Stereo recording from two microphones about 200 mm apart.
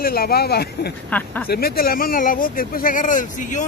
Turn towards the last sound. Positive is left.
turn(degrees=40)  # may be behind; listen again after turning